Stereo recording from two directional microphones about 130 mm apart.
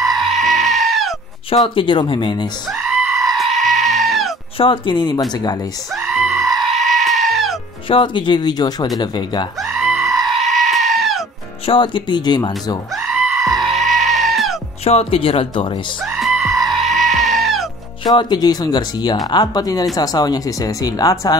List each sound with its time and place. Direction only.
0.0 s goat: centre (ahead or behind)
1.8 s speech: 40° left (ahead or behind)
2.7 s goat: 5° right (ahead or behind)
4.6 s speech: 40° left (ahead or behind)
5.9 s goat: 5° right (ahead or behind)
7.9 s speech: 40° left (ahead or behind)
9.6 s goat: 5° right (ahead or behind)
11.6 s speech: 40° left (ahead or behind)
12.9 s goat: 5° right (ahead or behind)
14.9 s speech: 45° left (ahead or behind)
16.1 s goat: centre (ahead or behind)
18.0 s speech: 35° left (ahead or behind)